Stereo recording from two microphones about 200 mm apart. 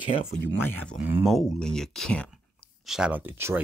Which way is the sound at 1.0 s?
5° right (ahead or behind).